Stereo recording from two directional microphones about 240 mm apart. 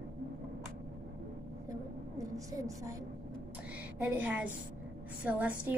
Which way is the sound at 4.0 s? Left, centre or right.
Centre.